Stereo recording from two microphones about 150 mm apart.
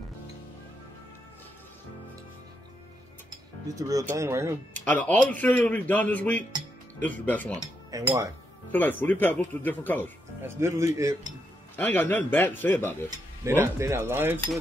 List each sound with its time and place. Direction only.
3.7 s speech: 20° right (ahead or behind)
4.8 s speech: 10° left (ahead or behind)
7.5 s cutlery: 20° right (ahead or behind)
8.7 s speech: 10° left (ahead or behind)
10.4 s speech: 20° right (ahead or behind)
11.7 s speech: 15° left (ahead or behind)
13.1 s cutlery: 15° right (ahead or behind)